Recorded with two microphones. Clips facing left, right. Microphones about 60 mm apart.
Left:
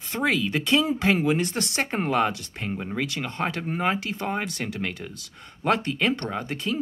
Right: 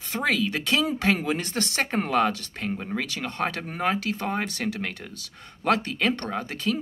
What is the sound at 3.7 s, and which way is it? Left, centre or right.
Speech, centre.